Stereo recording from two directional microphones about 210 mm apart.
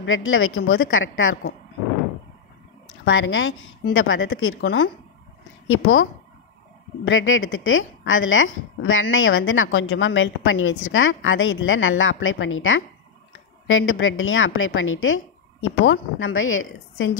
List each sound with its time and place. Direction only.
0.0 s a woman's voice: 70° left (ahead or behind)
3.1 s a woman's voice: 70° left (ahead or behind)
5.7 s a woman's voice: 75° left (ahead or behind)
7.1 s a woman's voice: 70° left (ahead or behind)